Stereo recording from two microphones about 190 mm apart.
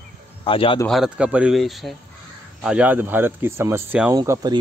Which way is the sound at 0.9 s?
5° right (ahead or behind).